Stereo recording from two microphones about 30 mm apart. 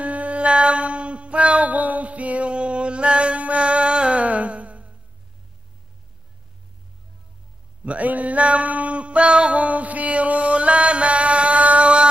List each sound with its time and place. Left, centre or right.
0.0 s a sound: right
1.7 s music: right
2.5 s mantra: right
4.2 s music: right
7.8 s a sound: right
8.1 s music: right
9.6 s music: right